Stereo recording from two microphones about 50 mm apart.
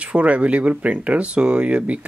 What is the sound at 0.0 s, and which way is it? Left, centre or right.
Speech, right.